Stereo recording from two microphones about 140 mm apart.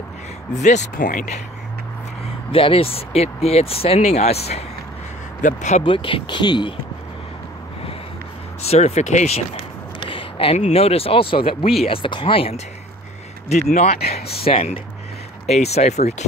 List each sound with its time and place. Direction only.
0.6 s speech: 60° left (ahead or behind)
2.5 s speech: 40° left (ahead or behind); by 5.9 s 55° left (ahead or behind)
5.9 s speech: 40° left (ahead or behind)
8.6 s speech: 50° left (ahead or behind)
9.9 s speech: 40° left (ahead or behind)